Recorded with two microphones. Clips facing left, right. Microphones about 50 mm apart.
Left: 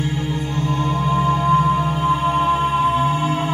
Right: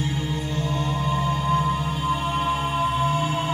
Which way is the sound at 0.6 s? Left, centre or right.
Left.